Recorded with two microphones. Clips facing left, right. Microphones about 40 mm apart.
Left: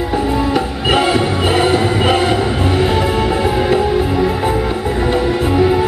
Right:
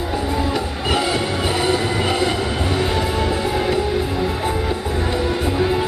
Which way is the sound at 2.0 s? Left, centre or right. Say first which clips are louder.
Left 6 dB; left.